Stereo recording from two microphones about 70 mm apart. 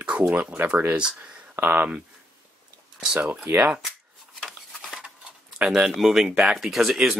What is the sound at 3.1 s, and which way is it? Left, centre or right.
Speech, right.